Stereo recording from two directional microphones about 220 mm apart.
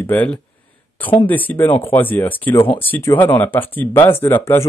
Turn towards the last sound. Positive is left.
turn(degrees=10)  # may be behind; listen again after turning